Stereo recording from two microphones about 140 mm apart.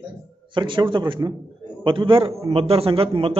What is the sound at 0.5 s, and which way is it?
A man's voice, 35° right (ahead or behind).